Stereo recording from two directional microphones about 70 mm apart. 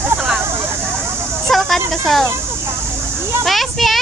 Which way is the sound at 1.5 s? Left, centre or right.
Centre.